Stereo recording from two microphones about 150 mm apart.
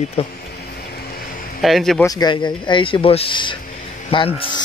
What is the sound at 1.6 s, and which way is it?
Speech, centre (ahead or behind).